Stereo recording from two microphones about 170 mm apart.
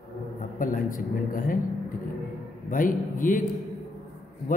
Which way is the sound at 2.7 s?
50° left (ahead or behind).